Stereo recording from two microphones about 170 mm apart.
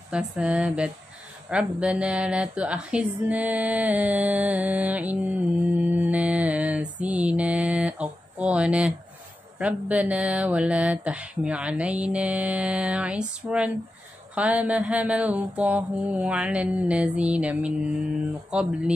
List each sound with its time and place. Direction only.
0.1 s speech: 5° right (ahead or behind)
5.3 s mantra: 5° right (ahead or behind)
9.6 s speech: 10° right (ahead or behind)